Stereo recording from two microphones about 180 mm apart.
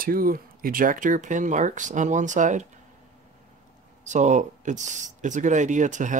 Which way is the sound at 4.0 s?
40° right (ahead or behind).